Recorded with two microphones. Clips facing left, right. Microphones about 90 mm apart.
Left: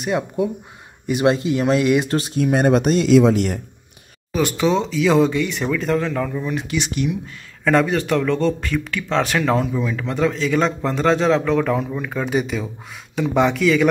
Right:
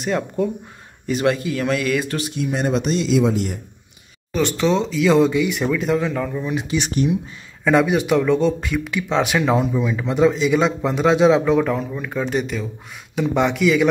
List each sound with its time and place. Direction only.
0.0 s speech: 10° left (ahead or behind)
1.2 s speech: 25° left (ahead or behind)
2.1 s speech: 35° left (ahead or behind)
2.4 s speech: 50° left (ahead or behind)
3.1 s speech: 85° left
4.3 s speech: 5° left (ahead or behind)
6.5 s speech: 20° right (ahead or behind)
6.8 s speech: 35° right (ahead or behind)
7.6 s speech: 10° right (ahead or behind)
11.7 s speech: centre (ahead or behind)